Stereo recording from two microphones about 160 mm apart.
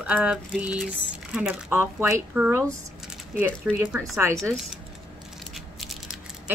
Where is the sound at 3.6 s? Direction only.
10° right (ahead or behind).